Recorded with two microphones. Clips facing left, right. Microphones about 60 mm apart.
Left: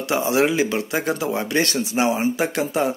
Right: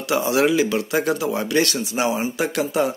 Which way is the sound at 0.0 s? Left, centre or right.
Left.